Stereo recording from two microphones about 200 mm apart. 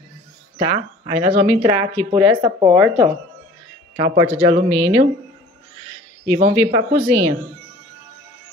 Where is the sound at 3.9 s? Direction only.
25° right (ahead or behind).